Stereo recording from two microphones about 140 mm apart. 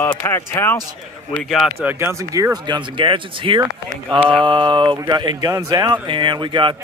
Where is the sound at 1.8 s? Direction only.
15° right (ahead or behind).